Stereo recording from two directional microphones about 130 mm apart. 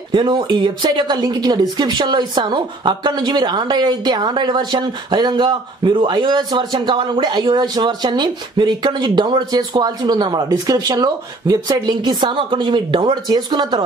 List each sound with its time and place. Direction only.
0.1 s speech: 35° right (ahead or behind)